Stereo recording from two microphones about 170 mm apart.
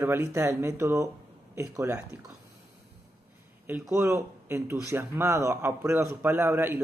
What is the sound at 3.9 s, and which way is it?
A man's voice, 15° right (ahead or behind).